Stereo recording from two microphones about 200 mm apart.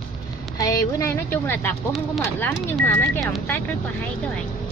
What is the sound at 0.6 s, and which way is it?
A woman's voice, 15° left (ahead or behind).